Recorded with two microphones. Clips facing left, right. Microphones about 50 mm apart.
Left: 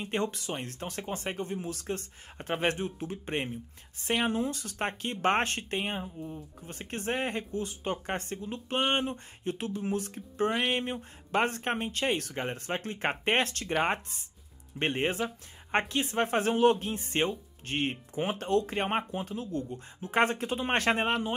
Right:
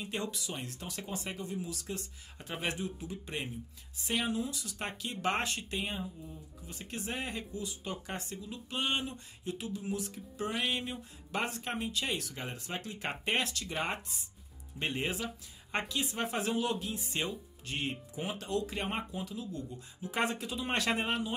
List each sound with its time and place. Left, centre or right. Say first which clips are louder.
0.0 s speech: left 6 dB; left